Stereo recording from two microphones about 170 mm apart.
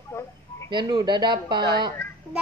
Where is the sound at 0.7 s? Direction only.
25° right (ahead or behind).